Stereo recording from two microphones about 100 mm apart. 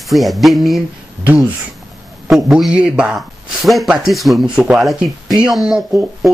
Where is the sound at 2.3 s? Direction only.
5° right (ahead or behind).